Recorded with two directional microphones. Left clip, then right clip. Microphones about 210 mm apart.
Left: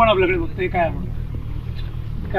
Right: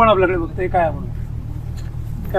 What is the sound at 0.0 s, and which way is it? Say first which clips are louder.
Speech: right 2 dB; 5° right (ahead or behind).